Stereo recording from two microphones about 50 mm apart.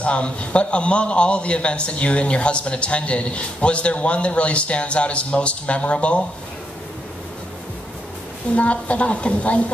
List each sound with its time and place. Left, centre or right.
0.0 s a man's voice: left
8.5 s a man's voice: left